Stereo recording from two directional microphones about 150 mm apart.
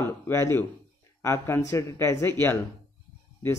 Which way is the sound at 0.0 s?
20° left (ahead or behind).